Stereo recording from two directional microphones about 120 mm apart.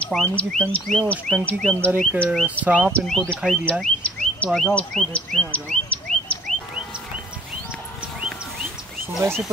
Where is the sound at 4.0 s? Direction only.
10° left (ahead or behind).